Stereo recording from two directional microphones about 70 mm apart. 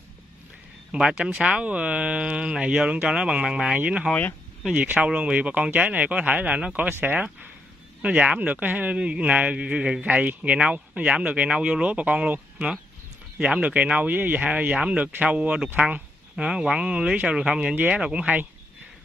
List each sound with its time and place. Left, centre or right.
0.9 s a man's voice: centre
17.7 s a man's voice: right